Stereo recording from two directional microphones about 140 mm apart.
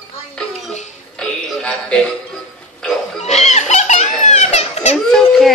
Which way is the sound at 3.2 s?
50° left (ahead or behind).